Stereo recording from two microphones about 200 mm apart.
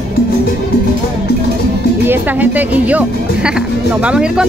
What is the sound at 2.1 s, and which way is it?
Speech, 10° right (ahead or behind).